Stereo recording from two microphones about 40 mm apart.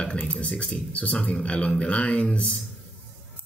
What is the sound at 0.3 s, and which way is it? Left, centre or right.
Speech, left.